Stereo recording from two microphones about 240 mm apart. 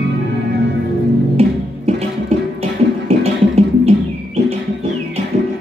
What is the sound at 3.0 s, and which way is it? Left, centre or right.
Music, right.